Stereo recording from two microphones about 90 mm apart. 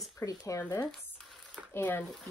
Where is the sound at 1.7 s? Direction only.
25° left (ahead or behind).